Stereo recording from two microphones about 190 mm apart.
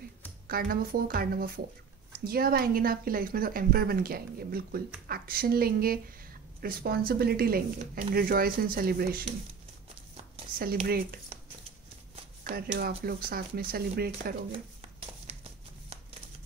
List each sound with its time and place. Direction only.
0.5 s a woman's voice: 50° right (ahead or behind)
10.9 s a woman's voice: 50° right (ahead or behind)
12.4 s a woman's voice: 55° right (ahead or behind)
14.5 s a sound: 30° right (ahead or behind)